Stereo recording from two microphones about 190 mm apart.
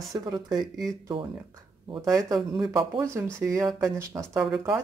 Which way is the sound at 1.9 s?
20° right (ahead or behind).